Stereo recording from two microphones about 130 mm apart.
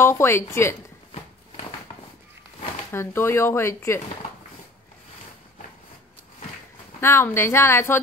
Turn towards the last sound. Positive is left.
turn(degrees=20)  # may be behind; listen again after turning